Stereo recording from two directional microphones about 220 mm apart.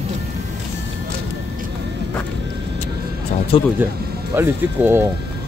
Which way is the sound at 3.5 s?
25° left (ahead or behind).